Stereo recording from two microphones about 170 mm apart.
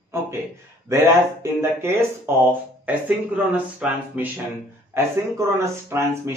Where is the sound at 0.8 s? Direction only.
15° right (ahead or behind).